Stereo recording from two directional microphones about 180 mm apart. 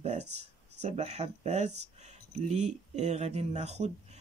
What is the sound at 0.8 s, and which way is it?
Speech, 40° right (ahead or behind).